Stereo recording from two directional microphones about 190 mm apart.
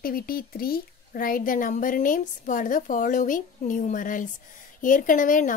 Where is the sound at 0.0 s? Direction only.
50° left (ahead or behind).